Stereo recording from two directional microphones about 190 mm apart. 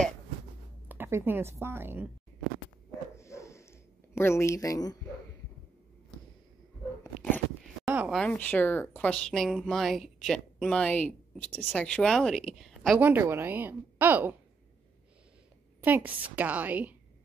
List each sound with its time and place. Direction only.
0.8 s a woman's voice: 10° right (ahead or behind)
3.2 s a sound: 15° left (ahead or behind)
4.1 s a woman's voice: 15° left (ahead or behind)
7.0 s dog: 10° left (ahead or behind)
7.8 s a sound: 5° right (ahead or behind)
8.2 s speech: 5° left (ahead or behind); by 14.3 s 10° right (ahead or behind)
15.8 s a woman's voice: 10° right (ahead or behind)